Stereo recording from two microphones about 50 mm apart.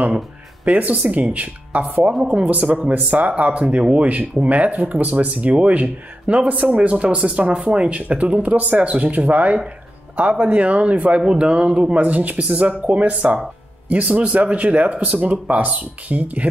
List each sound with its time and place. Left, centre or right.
0.7 s speech: right